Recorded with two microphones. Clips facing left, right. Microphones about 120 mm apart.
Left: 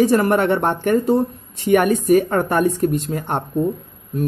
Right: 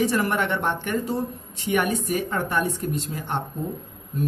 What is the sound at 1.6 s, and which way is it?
Speech, 55° left (ahead or behind).